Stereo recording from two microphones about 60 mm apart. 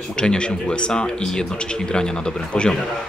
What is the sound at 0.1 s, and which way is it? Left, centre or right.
Speech, centre.